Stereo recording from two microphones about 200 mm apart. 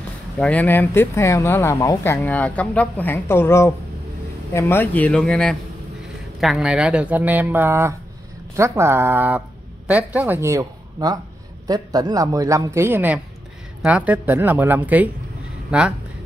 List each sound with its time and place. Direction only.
0.4 s speech: 5° left (ahead or behind)